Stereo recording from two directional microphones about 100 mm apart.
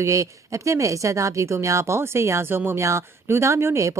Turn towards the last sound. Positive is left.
turn(degrees=-30)  # may be behind; listen again after turning